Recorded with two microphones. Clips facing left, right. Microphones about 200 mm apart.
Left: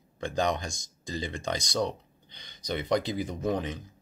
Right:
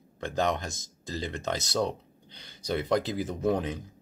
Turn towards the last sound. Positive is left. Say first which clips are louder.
# right 2 dB
turn(degrees=-5)  # may be behind; listen again after turning